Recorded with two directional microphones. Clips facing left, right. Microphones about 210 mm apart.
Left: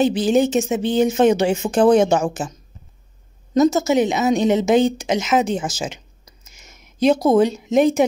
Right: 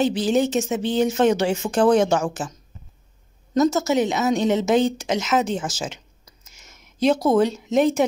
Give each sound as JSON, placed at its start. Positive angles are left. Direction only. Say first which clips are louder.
{"t": 0.0, "sound": "speech", "louder": "left 3 dB", "side_deg": 20}
{"t": 3.5, "sound": "a woman's voice", "louder": "left 3 dB", "side_deg": 15}